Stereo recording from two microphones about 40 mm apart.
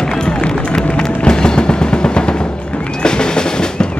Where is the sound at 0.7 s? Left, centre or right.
Left.